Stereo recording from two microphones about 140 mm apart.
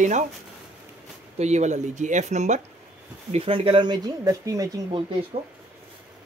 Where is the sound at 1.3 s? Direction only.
55° right (ahead or behind).